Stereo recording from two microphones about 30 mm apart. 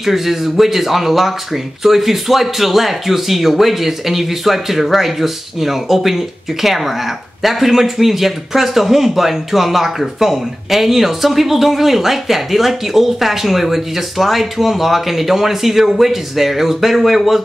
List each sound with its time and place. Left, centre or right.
0.0 s speech: centre